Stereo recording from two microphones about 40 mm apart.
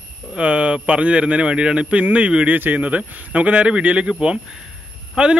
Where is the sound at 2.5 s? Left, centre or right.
Right.